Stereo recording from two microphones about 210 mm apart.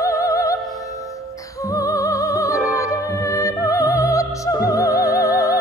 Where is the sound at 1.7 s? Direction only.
15° left (ahead or behind).